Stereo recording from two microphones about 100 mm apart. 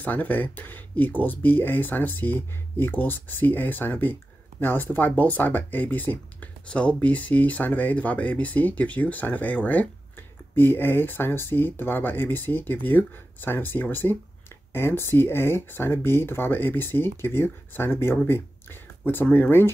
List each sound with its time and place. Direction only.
0.0 s speech: 15° left (ahead or behind)